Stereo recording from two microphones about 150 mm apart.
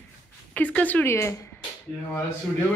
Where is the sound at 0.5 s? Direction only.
10° left (ahead or behind).